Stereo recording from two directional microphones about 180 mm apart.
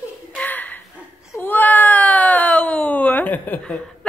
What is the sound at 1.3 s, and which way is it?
Cat, 10° left (ahead or behind).